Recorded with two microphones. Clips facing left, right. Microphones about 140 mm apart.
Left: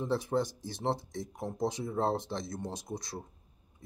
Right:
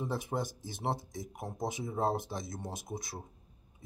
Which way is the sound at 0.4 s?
50° right (ahead or behind).